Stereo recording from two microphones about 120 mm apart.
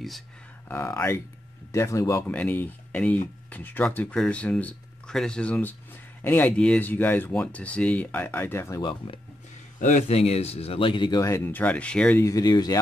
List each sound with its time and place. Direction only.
0.7 s speech: 20° left (ahead or behind)
2.3 s speech: 15° left (ahead or behind)
8.8 s speech: 45° left (ahead or behind)
9.8 s speech: 90° left; by 12.2 s 10° left (ahead or behind)
12.2 s speech: 30° left (ahead or behind)